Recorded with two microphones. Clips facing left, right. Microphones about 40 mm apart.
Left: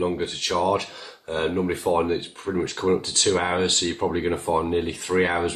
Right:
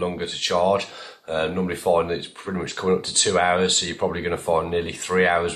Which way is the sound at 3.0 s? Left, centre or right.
Centre.